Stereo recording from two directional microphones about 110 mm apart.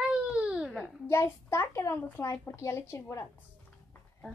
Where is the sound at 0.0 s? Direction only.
10° right (ahead or behind).